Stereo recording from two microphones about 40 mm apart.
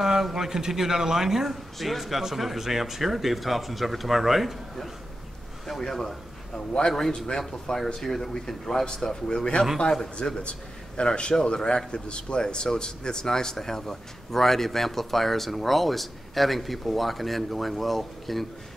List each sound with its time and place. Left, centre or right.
0.0 s a man's voice: centre
5.8 s a man's voice: centre